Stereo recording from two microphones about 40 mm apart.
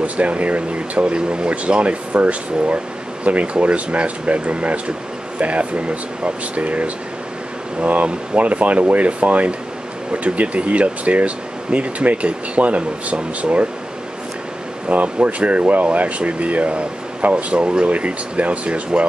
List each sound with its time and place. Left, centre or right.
0.0 s speech: right
14.9 s speech: right